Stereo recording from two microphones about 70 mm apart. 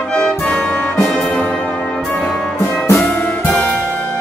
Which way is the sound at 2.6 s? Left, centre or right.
Left.